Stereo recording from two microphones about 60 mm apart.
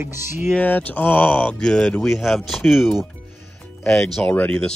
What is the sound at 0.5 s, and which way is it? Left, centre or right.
Speech, left.